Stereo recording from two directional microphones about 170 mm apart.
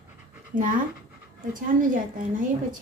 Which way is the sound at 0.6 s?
50° right (ahead or behind).